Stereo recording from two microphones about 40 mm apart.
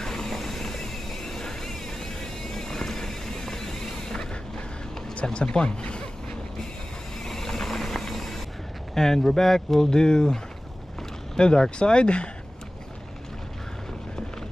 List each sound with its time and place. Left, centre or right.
0.0 s vehicle: centre
7.2 s vehicle: centre
8.9 s speech: centre